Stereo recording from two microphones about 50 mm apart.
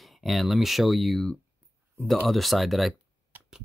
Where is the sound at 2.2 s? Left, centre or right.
Centre.